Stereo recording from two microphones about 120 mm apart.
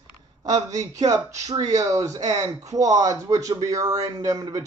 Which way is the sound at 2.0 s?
30° right (ahead or behind).